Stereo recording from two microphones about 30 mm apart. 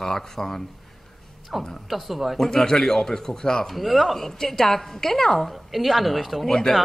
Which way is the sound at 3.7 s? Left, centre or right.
Centre.